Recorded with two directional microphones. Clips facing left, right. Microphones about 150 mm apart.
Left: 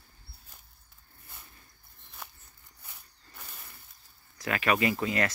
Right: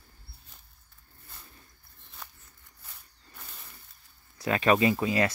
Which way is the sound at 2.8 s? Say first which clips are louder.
Left 1 dB; 15° left (ahead or behind).